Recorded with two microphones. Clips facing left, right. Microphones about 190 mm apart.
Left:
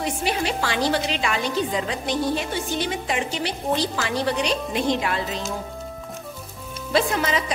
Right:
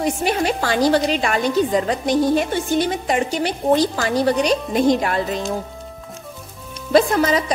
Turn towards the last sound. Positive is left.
turn(degrees=-40)  # may be behind; listen again after turning